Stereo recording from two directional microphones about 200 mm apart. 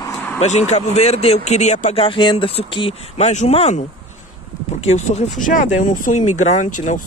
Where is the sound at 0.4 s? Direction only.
35° left (ahead or behind).